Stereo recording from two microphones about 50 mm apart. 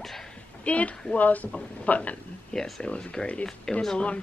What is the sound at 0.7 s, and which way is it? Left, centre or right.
Speech, left.